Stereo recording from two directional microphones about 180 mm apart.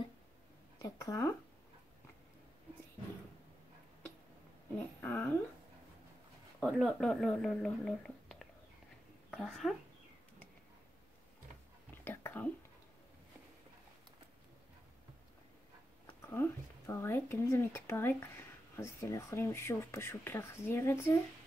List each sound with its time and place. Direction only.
0.7 s speech: 20° left (ahead or behind)
4.7 s a sound: 10° left (ahead or behind)
6.6 s speech: centre (ahead or behind)
12.0 s whispering: 10° left (ahead or behind)
16.2 s speech: 15° left (ahead or behind)